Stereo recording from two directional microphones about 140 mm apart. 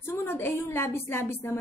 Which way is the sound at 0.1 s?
15° left (ahead or behind).